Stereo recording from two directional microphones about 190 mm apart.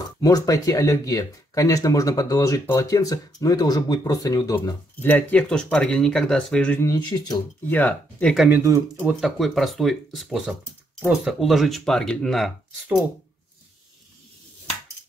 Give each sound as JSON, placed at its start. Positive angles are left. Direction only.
{"t": 0.2, "sound": "speech", "side_deg": 20}
{"t": 5.0, "sound": "speech", "side_deg": 10}
{"t": 6.9, "sound": "speech", "side_deg": 20}
{"t": 7.7, "sound": "speech", "side_deg": 5}
{"t": 8.5, "sound": "speech", "side_deg": -15}
{"t": 9.2, "sound": "speech", "side_deg": 0}